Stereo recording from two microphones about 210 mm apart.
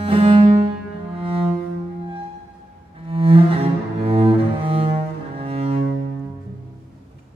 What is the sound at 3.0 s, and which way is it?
Cello, 25° right (ahead or behind).